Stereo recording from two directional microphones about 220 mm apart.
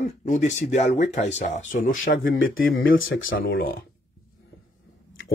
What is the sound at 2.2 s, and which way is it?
Speech, 65° left (ahead or behind).